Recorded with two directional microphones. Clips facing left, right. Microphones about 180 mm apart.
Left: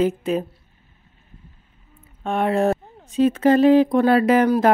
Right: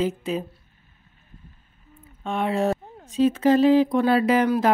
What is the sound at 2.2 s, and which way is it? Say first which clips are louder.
Speech: left 4 dB; 50° left (ahead or behind).